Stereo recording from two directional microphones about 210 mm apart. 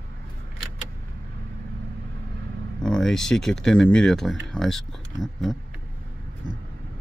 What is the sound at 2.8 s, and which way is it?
Speech, 5° left (ahead or behind).